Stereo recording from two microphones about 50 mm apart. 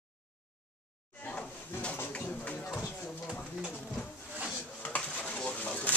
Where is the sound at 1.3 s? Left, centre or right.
Left.